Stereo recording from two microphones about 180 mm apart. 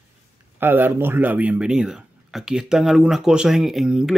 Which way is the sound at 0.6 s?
10° right (ahead or behind).